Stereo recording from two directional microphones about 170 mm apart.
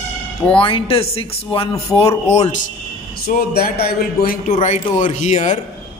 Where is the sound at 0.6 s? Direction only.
30° left (ahead or behind).